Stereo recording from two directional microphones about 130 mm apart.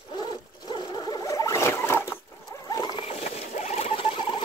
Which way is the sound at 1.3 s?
25° left (ahead or behind).